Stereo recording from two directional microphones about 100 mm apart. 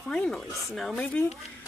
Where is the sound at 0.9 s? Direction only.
15° left (ahead or behind).